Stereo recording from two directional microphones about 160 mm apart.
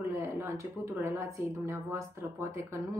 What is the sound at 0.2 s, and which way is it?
Speech, 20° right (ahead or behind).